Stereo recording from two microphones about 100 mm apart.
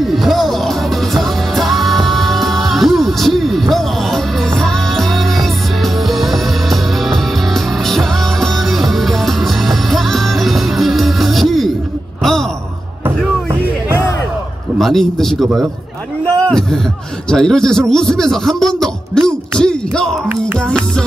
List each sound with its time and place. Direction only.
0.0 s music: centre (ahead or behind)
12.2 s sigh: 5° left (ahead or behind)
13.0 s music: 25° right (ahead or behind)
14.8 s speech: centre (ahead or behind)